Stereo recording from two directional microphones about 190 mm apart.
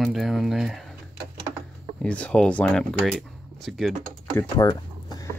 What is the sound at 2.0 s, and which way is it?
Speech, 5° left (ahead or behind).